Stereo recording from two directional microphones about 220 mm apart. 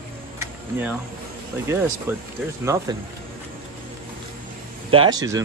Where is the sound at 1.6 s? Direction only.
10° right (ahead or behind).